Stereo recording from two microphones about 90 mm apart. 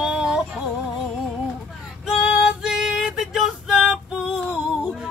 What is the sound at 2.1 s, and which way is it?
Female singing, 5° right (ahead or behind).